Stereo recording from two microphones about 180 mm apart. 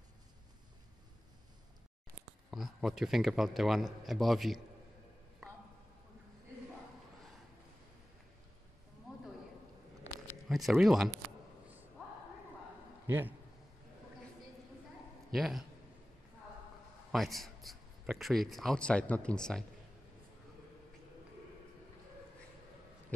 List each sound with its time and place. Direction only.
2.5 s a man's voice: centre (ahead or behind)
9.1 s a sound: 5° right (ahead or behind)
10.5 s a man's voice: centre (ahead or behind)
13.0 s a man's voice: 10° right (ahead or behind)
15.3 s a man's voice: centre (ahead or behind)
17.1 s a man's voice: centre (ahead or behind)